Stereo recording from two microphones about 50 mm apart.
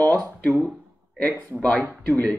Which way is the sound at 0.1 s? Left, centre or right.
Left.